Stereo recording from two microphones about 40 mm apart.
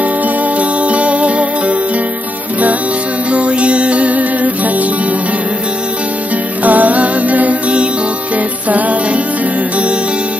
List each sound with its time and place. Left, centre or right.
0.6 s music: right
3.3 s music: right
6.6 s music: right
8.6 s music: right